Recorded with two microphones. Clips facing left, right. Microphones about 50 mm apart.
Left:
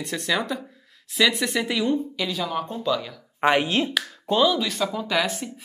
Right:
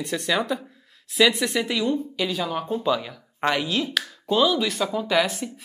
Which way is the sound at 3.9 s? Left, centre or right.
Centre.